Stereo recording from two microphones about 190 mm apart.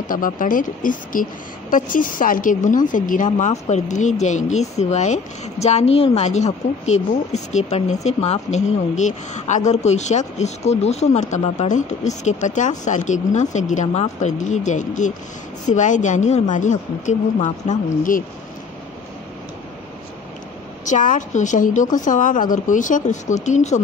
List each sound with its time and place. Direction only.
0.1 s a woman's voice: 45° left (ahead or behind)
20.8 s speech: 40° left (ahead or behind)